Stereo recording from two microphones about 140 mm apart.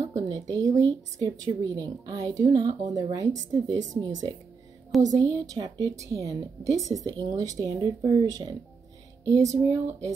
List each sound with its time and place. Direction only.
0.1 s a sound: 25° right (ahead or behind)
1.2 s a woman's voice: 25° right (ahead or behind)
4.9 s speech: centre (ahead or behind)
5.5 s a woman's voice: 25° right (ahead or behind)